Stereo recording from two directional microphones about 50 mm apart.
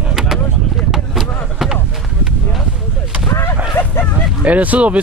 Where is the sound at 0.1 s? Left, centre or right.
Centre.